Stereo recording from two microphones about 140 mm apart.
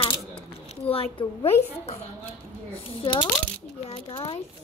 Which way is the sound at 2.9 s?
40° left (ahead or behind).